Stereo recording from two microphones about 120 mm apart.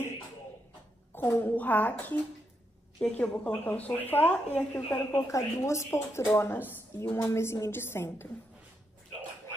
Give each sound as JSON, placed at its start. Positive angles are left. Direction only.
{"t": 1.1, "sound": "speech", "side_deg": 15}